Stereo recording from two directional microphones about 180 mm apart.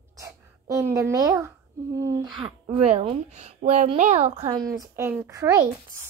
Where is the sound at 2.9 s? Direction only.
35° right (ahead or behind).